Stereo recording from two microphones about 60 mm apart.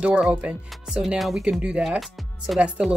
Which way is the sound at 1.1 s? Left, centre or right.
Centre.